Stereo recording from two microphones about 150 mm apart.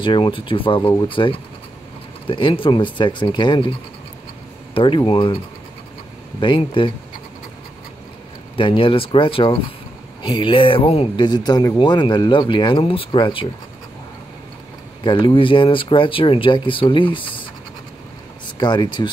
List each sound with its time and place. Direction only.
0.0 s speech: 35° left (ahead or behind)
4.7 s speech: 35° left (ahead or behind)
6.4 s speech: 35° left (ahead or behind)
8.5 s speech: 35° left (ahead or behind)
11.2 s speech: 30° left (ahead or behind)
15.0 s speech: 35° left (ahead or behind)
18.6 s speech: 30° left (ahead or behind)